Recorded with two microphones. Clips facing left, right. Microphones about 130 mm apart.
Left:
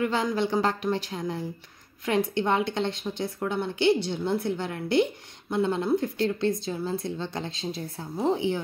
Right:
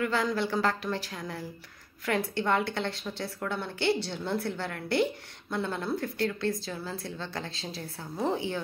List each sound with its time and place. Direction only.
0.0 s a woman's voice: 20° left (ahead or behind)